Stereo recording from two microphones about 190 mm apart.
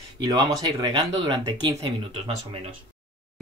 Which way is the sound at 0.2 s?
20° right (ahead or behind).